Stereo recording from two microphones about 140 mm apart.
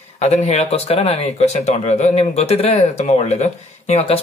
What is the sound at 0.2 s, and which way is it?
Speech, 50° left (ahead or behind).